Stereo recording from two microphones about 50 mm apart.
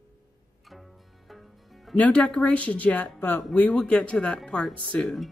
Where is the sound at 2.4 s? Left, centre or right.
Left.